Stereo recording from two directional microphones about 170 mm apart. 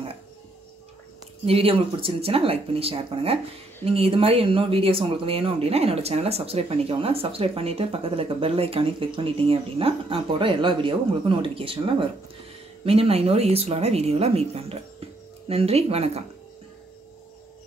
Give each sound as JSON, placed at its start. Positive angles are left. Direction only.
{"t": 1.4, "sound": "speech", "side_deg": -35}